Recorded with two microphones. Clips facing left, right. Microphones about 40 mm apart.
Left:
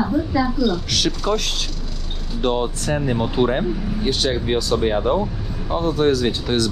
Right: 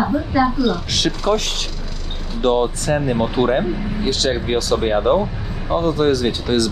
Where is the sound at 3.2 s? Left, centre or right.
Right.